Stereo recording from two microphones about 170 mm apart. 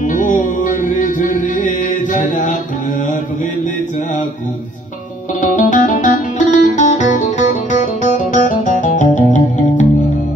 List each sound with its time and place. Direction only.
0.0 s music: 50° left (ahead or behind)
5.4 s music: 50° left (ahead or behind)